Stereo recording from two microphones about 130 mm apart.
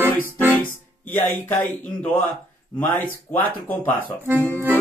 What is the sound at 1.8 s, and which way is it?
Speech, 10° left (ahead or behind).